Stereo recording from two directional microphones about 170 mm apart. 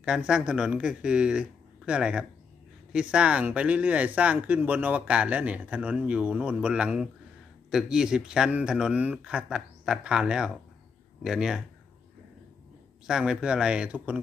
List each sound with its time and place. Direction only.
0.0 s speech: 5° right (ahead or behind)
13.0 s speech: 5° right (ahead or behind)